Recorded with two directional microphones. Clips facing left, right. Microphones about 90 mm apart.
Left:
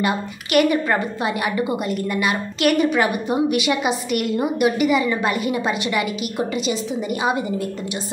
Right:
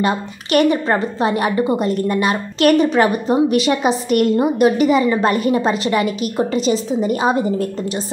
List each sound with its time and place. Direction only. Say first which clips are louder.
0.0 s a woman's voice: right 3 dB; 30° right (ahead or behind)